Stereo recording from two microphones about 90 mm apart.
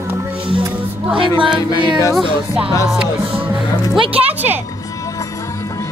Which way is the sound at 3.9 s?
85° right.